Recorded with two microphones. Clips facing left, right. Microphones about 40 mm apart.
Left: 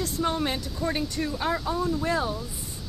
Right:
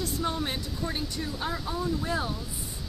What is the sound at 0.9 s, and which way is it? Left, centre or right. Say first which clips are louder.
Speech: left 5 dB; left.